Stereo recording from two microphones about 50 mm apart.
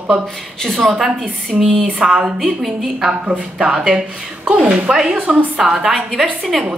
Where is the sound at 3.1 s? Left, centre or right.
Right.